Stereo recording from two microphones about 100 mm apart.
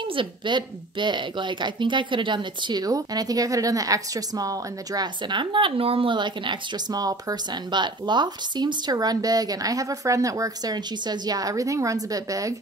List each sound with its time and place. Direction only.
0.0 s speech: 55° right (ahead or behind); by 12.5 s 35° right (ahead or behind)